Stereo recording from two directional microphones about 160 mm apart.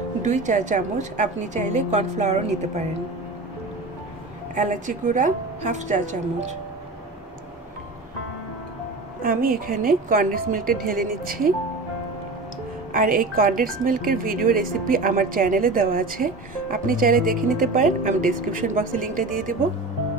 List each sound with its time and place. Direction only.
0.2 s a woman's voice: 50° right (ahead or behind)
4.6 s a woman's voice: 50° right (ahead or behind)
9.2 s a woman's voice: 65° right (ahead or behind)
12.9 s a woman's voice: 60° right (ahead or behind)